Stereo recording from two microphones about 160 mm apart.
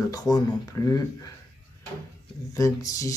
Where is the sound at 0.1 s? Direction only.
20° left (ahead or behind).